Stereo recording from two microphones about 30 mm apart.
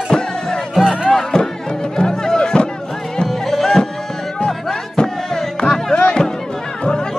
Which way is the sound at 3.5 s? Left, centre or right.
Centre.